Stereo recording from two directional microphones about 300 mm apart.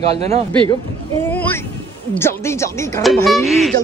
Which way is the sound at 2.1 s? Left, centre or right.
Centre.